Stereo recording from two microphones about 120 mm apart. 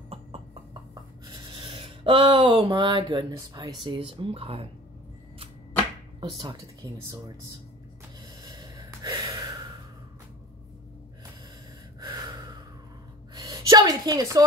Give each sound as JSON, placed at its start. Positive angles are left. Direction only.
{"t": 1.2, "sound": "speech", "side_deg": -40}
{"t": 6.2, "sound": "speech", "side_deg": -35}
{"t": 8.5, "sound": "gasp", "side_deg": -35}
{"t": 12.0, "sound": "gasp", "side_deg": -40}
{"t": 13.3, "sound": "a sound", "side_deg": -30}